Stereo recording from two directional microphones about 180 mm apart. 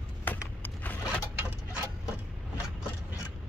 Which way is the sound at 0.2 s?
10° left (ahead or behind).